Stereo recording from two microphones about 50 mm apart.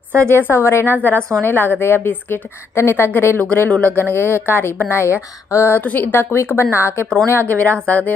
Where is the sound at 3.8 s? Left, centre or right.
Right.